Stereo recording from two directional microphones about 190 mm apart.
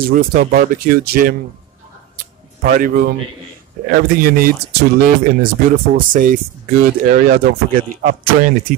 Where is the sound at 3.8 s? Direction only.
50° right (ahead or behind).